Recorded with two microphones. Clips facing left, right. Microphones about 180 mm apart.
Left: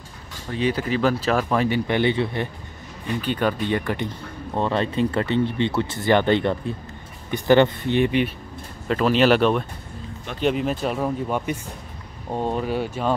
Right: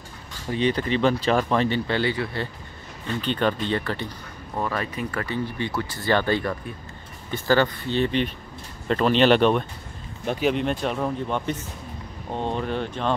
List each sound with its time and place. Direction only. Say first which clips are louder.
0.6 s speech: even; 5° left (ahead or behind)
3.1 s speech: left 1 dB; 10° left (ahead or behind)
4.6 s speech: left 6 dB; 25° left (ahead or behind); by 13.1 s 10° left (ahead or behind)